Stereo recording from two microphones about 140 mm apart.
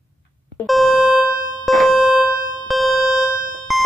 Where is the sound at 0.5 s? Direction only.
Centre (ahead or behind).